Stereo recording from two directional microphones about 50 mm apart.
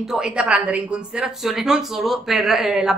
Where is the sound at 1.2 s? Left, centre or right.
Centre.